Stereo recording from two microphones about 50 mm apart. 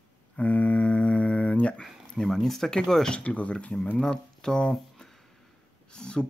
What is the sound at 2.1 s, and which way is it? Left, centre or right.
Speech, centre.